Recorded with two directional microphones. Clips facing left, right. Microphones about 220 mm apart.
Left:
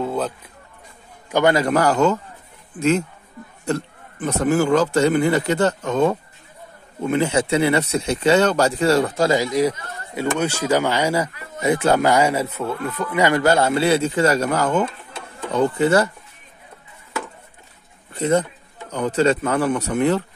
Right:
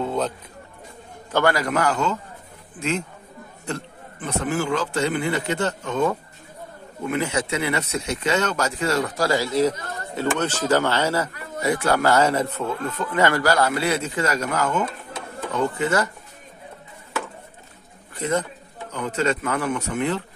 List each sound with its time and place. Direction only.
0.0 s a sound: centre (ahead or behind)
1.3 s speech: 20° left (ahead or behind); by 2.1 s 40° left (ahead or behind)
4.2 s speech: 40° left (ahead or behind)
7.1 s speech: 30° left (ahead or behind); by 9.8 s 15° left (ahead or behind)
9.8 s speech: 40° right (ahead or behind)
10.1 s speech: 10° left (ahead or behind); by 16.1 s 30° left (ahead or behind)
18.1 s a sound: 30° left (ahead or behind)
18.9 s speech: 35° left (ahead or behind)